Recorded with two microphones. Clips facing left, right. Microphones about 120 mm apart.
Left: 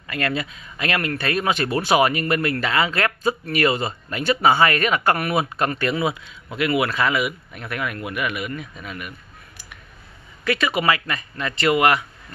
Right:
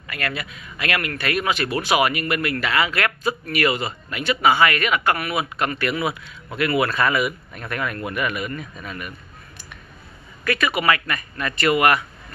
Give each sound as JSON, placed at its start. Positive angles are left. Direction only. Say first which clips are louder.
{"t": 0.1, "sound": "speech", "louder": "left 4 dB", "side_deg": 30}
{"t": 10.4, "sound": "speech", "louder": "even", "side_deg": 20}